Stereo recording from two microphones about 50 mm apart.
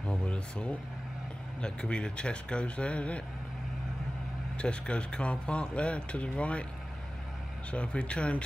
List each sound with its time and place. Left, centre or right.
0.0 s a sound: left
1.6 s speech: centre
4.6 s speech: left
7.7 s speech: left